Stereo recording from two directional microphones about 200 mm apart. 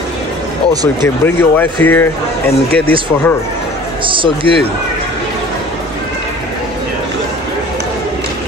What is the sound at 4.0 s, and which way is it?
Speech, 25° right (ahead or behind).